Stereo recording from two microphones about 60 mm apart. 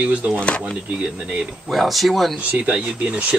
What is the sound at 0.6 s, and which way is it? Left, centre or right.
Speech, centre.